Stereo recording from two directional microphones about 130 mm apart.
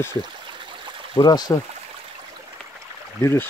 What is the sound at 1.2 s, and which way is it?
Speech, 30° left (ahead or behind).